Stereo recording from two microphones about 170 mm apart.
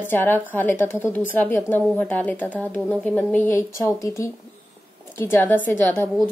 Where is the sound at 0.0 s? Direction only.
10° left (ahead or behind).